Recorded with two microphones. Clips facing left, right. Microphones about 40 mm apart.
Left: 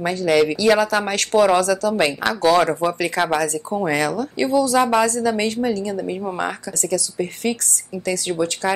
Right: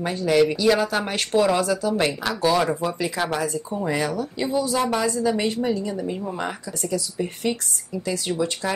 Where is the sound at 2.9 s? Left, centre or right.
Left.